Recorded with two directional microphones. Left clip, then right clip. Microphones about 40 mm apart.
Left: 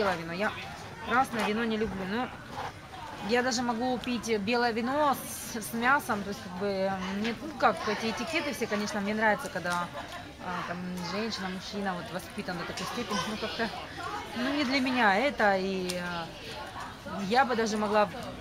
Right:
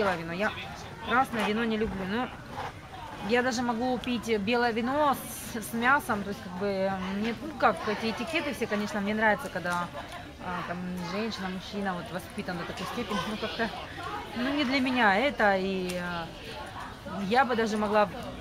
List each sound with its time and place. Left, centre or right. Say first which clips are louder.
0.0 s speech: right 1 dB; centre
3.3 s speech: right 1 dB; left
8.9 s speech: right 1 dB; centre